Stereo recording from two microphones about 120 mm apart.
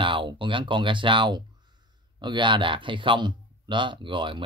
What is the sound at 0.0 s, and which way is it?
Speech, 45° right (ahead or behind).